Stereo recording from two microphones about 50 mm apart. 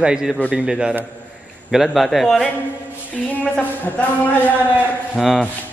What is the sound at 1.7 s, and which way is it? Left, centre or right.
Speech, centre.